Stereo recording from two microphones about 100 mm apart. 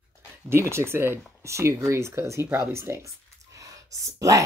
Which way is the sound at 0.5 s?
25° right (ahead or behind).